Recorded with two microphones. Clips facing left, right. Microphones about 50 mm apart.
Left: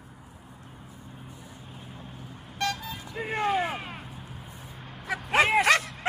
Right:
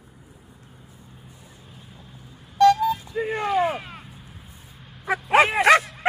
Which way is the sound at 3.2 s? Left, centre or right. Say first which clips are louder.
Even; left.